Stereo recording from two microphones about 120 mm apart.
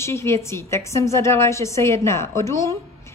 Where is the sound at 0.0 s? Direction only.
20° left (ahead or behind).